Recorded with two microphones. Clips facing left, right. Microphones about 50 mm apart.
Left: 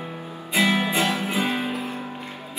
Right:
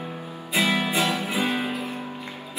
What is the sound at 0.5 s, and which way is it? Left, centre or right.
Music, left.